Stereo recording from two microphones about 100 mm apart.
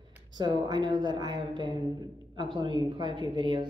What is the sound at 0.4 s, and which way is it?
Speech, 50° right (ahead or behind).